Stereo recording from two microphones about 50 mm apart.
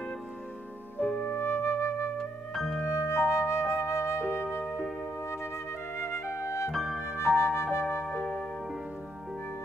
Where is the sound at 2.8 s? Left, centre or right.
Left.